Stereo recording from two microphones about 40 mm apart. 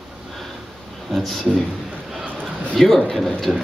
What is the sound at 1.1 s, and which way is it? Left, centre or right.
Speech, centre.